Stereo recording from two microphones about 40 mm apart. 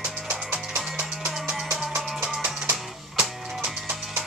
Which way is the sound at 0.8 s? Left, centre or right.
Right.